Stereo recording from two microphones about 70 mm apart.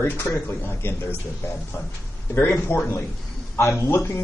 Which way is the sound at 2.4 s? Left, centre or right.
Left.